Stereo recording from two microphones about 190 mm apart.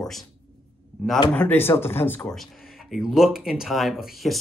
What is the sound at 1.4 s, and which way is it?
Speech, 10° left (ahead or behind).